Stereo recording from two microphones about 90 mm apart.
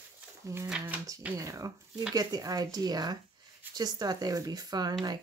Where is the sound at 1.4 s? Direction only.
40° right (ahead or behind).